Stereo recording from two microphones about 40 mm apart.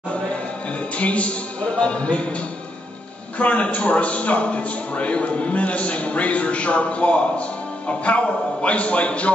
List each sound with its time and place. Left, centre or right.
0.9 s a man's voice: left
3.3 s a man's voice: left